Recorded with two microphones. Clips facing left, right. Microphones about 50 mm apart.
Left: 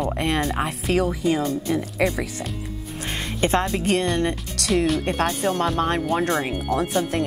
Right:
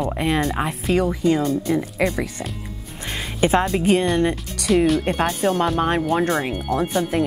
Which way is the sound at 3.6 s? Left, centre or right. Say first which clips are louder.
Right 3 dB; centre.